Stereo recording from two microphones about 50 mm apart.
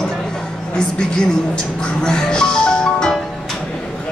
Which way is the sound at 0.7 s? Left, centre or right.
Centre.